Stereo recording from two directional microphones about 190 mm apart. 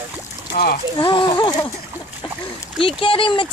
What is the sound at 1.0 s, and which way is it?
Speech, 25° left (ahead or behind).